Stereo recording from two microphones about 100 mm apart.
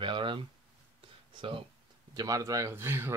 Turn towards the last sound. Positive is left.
turn(degrees=-25)  # may be behind; listen again after turning